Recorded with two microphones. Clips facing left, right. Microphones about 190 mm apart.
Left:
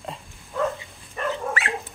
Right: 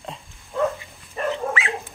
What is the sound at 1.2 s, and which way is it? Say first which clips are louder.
Dog: right 2 dB; 30° right (ahead or behind).